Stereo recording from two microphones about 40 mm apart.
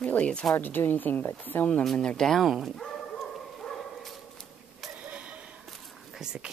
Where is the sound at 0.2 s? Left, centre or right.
Left.